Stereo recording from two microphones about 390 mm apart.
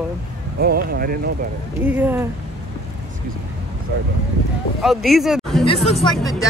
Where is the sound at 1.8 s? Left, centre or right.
Centre.